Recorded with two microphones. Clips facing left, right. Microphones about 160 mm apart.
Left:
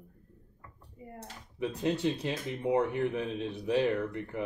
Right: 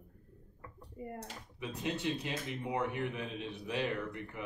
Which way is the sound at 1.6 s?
35° left (ahead or behind).